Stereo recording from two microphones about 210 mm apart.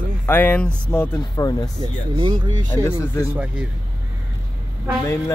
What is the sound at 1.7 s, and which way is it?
Speech, 20° right (ahead or behind).